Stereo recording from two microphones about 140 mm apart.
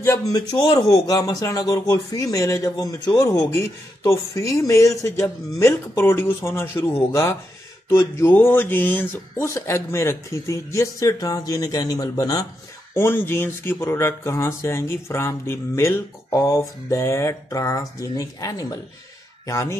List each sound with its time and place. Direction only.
0.0 s speech: 25° left (ahead or behind)
12.9 s speech: 15° left (ahead or behind)